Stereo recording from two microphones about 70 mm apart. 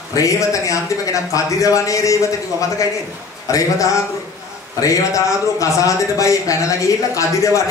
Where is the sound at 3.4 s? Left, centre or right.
Left.